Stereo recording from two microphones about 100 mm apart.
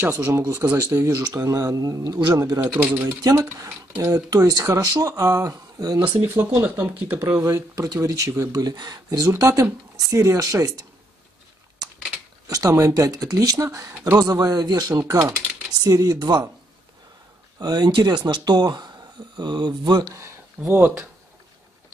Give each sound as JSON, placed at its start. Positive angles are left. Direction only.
{"t": 0.0, "sound": "speech", "side_deg": -20}
{"t": 0.7, "sound": "speech", "side_deg": -15}
{"t": 1.0, "sound": "speech", "side_deg": -30}
{"t": 2.6, "sound": "speech", "side_deg": -20}
{"t": 3.1, "sound": "speech", "side_deg": -35}
{"t": 6.3, "sound": "speech", "side_deg": -25}
{"t": 7.4, "sound": "speech", "side_deg": -30}
{"t": 12.4, "sound": "speech", "side_deg": -35}
{"t": 17.6, "sound": "speech", "side_deg": -45}
{"t": 20.2, "sound": "speech", "side_deg": -30}